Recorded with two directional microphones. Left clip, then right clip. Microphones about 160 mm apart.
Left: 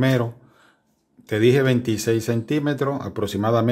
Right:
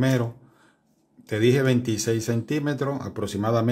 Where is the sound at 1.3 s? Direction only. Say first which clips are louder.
Left 3 dB; 15° left (ahead or behind).